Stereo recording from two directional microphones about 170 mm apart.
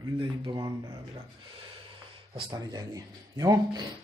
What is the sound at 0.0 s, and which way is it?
Speech, 25° right (ahead or behind).